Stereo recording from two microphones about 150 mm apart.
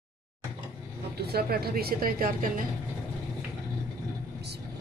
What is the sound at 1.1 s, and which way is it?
A woman's voice, 90° right.